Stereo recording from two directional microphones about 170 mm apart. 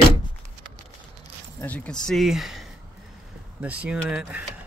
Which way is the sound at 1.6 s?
10° left (ahead or behind).